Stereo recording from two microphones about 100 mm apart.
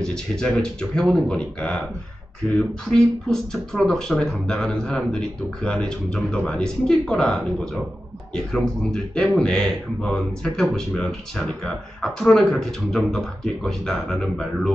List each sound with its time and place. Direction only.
0.0 s speech: 5° left (ahead or behind)